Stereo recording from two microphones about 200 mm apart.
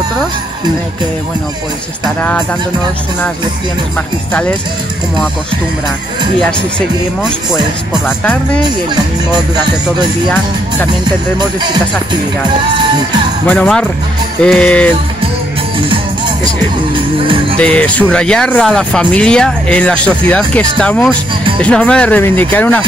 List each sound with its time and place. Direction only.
8.2 s speech: 5° left (ahead or behind)
8.6 s speech: 20° right (ahead or behind)
11.3 s speech: 20° right (ahead or behind)
13.5 s speech: 5° left (ahead or behind)
16.9 s music: 25° right (ahead or behind)
17.6 s speech: 5° left (ahead or behind)